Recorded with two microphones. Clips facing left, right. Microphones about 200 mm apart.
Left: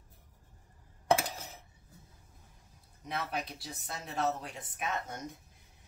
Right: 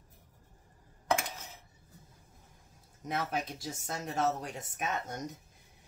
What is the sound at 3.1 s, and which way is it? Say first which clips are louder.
Speech: right 3 dB; 45° right (ahead or behind).